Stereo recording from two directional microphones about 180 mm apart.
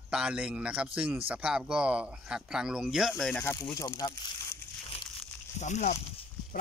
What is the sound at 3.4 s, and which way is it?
Speech, 15° left (ahead or behind).